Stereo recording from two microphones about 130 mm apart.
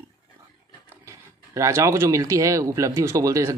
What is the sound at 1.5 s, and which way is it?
Speech, 25° right (ahead or behind).